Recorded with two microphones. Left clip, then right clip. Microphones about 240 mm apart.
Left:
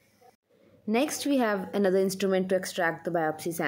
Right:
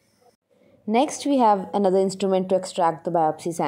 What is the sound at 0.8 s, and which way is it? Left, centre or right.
A woman's voice, centre.